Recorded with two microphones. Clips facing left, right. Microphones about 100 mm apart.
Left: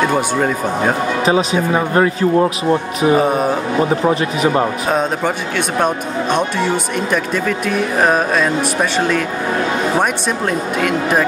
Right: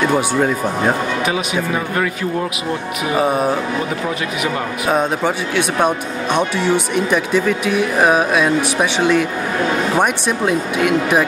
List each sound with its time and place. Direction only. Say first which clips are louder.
1.2 s speech: left 4 dB; 30° left (ahead or behind)
3.2 s speech: left 1 dB; centre (ahead or behind)
3.9 s speech: left 6 dB; 30° left (ahead or behind)
4.8 s speech: even; 5° right (ahead or behind)